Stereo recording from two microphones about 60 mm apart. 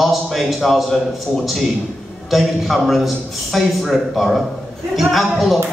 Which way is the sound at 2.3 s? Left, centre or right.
Centre.